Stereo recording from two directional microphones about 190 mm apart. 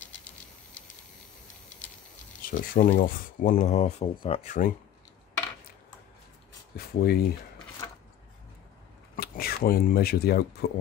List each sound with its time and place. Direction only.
2.5 s speech: 45° left (ahead or behind)
6.8 s speech: 55° left (ahead or behind)
9.1 s speech: 50° left (ahead or behind)